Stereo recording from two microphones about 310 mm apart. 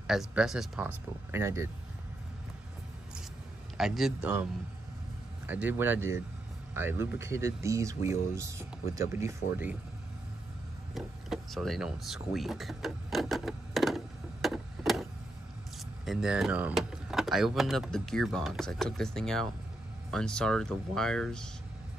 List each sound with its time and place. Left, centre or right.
0.0 s speech: centre
3.7 s speech: centre
5.5 s speech: centre
11.0 s a sound: centre
16.1 s speech: centre